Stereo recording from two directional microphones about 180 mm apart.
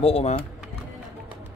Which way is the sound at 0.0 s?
35° left (ahead or behind).